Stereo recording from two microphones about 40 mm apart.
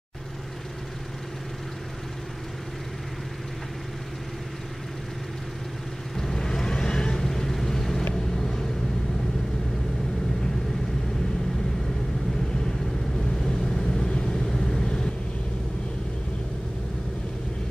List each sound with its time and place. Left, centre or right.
6.1 s vehicle: centre
7.2 s vehicle: centre
13.4 s vehicle: centre